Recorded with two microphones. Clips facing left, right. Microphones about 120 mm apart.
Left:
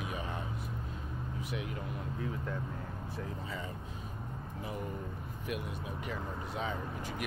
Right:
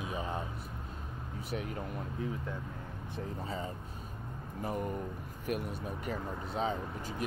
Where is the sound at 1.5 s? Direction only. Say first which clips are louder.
Right 3 dB; 40° right (ahead or behind).